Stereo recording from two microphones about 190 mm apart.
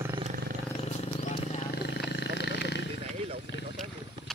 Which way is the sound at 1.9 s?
65° left (ahead or behind).